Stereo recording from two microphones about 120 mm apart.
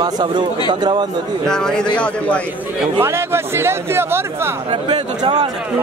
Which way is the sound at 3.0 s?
20° right (ahead or behind).